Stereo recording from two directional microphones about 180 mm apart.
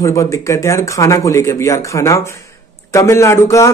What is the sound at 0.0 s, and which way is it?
Speech, 15° left (ahead or behind).